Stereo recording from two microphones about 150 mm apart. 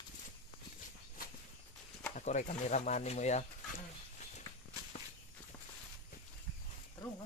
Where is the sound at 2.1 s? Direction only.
55° left (ahead or behind).